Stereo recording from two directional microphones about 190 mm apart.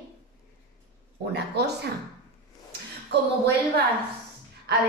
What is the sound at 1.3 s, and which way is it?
Speech, 60° right (ahead or behind).